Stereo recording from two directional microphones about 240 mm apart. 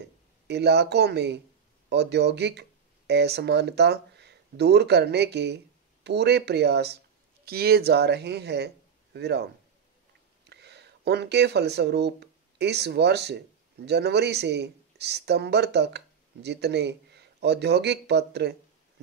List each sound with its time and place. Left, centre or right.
0.5 s a man's voice: right
10.5 s speech: right